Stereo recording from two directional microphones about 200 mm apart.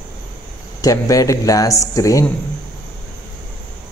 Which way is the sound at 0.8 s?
15° left (ahead or behind).